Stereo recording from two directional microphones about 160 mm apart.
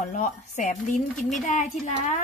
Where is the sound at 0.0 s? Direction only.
50° left (ahead or behind).